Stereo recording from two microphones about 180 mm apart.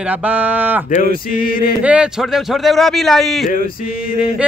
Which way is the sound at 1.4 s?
55° left (ahead or behind).